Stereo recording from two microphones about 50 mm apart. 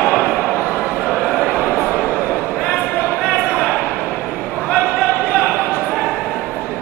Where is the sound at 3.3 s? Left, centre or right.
Centre.